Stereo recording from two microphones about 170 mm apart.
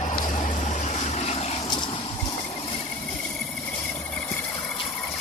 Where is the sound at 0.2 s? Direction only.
50° left (ahead or behind).